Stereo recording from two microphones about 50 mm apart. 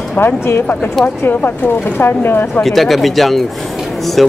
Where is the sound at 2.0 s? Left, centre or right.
Left.